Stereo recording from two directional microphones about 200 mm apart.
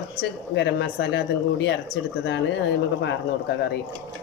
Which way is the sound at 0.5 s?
60° left (ahead or behind).